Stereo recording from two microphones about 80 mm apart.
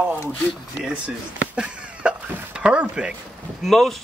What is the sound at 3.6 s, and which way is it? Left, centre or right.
Speech, centre.